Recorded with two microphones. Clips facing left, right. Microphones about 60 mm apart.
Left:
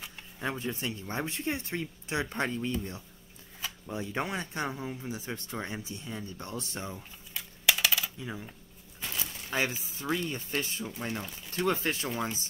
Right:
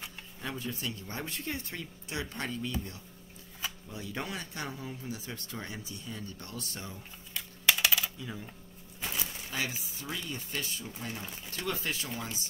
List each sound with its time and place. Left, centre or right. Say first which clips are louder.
0.4 s speech: left 4 dB; left
7.3 s typing: even; centre
9.0 s a sound: right 1 dB; centre
9.5 s speech: left 6 dB; left
9.8 s a sound: left 7 dB; left
10.3 s speech: left 4 dB; left